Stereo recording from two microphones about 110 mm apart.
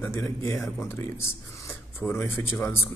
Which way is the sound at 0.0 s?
25° left (ahead or behind).